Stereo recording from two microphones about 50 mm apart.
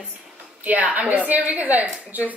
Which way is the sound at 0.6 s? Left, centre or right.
Right.